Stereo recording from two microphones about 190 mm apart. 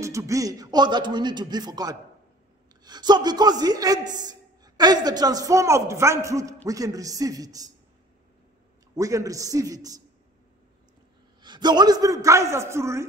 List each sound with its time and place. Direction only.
0.0 s a man's voice: 15° right (ahead or behind)
8.9 s a man's voice: 15° right (ahead or behind)
11.4 s a man's voice: 25° right (ahead or behind)